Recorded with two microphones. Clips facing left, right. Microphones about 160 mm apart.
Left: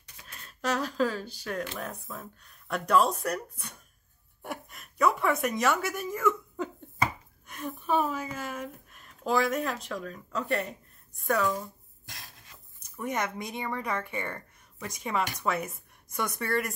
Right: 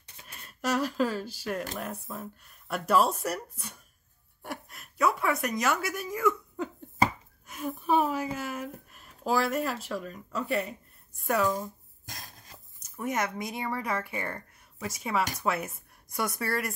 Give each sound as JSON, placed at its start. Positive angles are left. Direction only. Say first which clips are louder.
{"t": 0.4, "sound": "a woman's voice", "louder": "right 2 dB", "side_deg": -10}
{"t": 12.1, "sound": "a sound", "louder": "right 3 dB", "side_deg": -45}
{"t": 12.9, "sound": "speech", "louder": "right 1 dB", "side_deg": 0}